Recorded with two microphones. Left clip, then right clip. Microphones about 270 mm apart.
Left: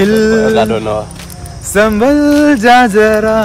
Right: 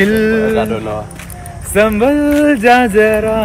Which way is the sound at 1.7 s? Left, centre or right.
Centre.